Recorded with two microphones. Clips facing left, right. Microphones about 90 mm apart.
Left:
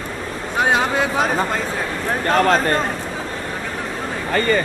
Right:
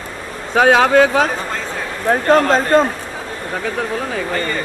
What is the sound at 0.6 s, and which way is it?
Speech, 80° right.